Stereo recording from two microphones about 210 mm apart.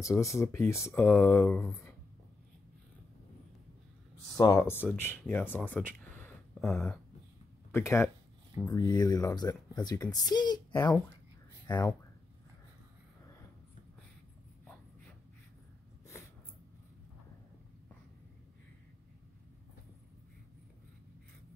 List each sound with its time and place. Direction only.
0.0 s speech: 15° left (ahead or behind)
4.4 s a woman's voice: 15° left (ahead or behind)